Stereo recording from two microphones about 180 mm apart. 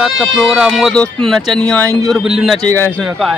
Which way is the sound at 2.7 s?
10° left (ahead or behind).